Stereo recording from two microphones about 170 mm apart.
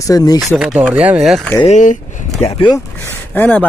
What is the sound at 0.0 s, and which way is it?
Speech, 20° left (ahead or behind).